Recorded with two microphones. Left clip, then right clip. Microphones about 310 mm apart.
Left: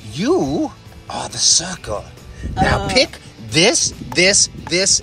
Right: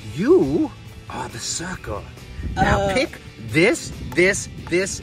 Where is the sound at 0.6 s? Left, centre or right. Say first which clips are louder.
Left 3 dB; left.